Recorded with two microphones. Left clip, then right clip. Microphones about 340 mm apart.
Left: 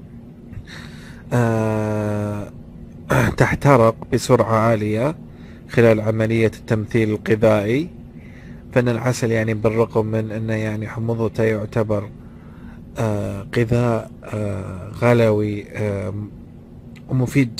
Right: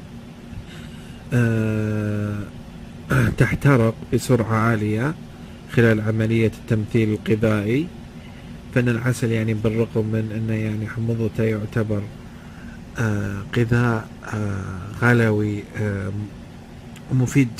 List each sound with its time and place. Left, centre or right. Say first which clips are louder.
1.3 s humming: left 4 dB; centre
3.1 s speech: left 4 dB; centre
8.7 s speech: left 4 dB; centre
17.2 s speech: left 1 dB; centre